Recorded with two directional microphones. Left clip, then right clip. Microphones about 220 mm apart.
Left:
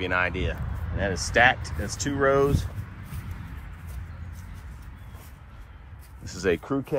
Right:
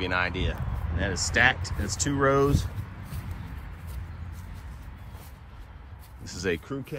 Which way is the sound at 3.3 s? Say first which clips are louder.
Even; 45° right (ahead or behind).